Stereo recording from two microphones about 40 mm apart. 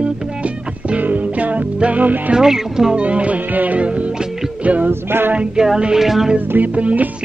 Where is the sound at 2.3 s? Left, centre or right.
Centre.